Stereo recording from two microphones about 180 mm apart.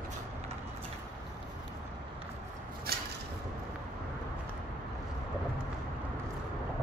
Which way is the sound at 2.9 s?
60° right (ahead or behind).